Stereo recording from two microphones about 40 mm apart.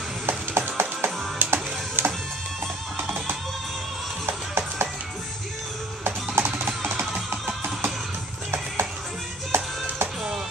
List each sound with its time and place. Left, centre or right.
0.3 s music: right
1.4 s music: right
4.3 s music: right
6.0 s music: right
9.5 s music: right